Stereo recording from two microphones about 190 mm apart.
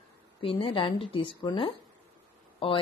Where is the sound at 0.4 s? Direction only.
30° left (ahead or behind).